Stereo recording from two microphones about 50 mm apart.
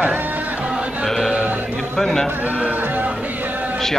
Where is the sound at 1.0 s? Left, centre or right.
Centre.